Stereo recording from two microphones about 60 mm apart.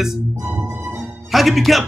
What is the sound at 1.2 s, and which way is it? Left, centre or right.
Speech, centre.